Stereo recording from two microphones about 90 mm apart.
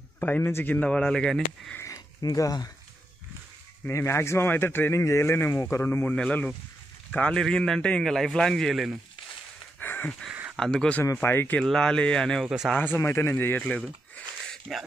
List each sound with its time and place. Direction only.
0.2 s speech: 20° left (ahead or behind)
0.7 s a man's voice: 10° left (ahead or behind)
2.2 s speech: 45° left (ahead or behind)
3.9 s speech: 30° left (ahead or behind)
6.1 s a man's voice: 10° left (ahead or behind)
9.8 s a sound: 20° left (ahead or behind)
10.5 s speech: 5° left (ahead or behind)
11.1 s speech: 20° left (ahead or behind)
11.6 s a man's voice: 5° left (ahead or behind)
12.4 s speech: 5° right (ahead or behind)
12.9 s speech: 25° left (ahead or behind)
14.7 s speech: 5° left (ahead or behind)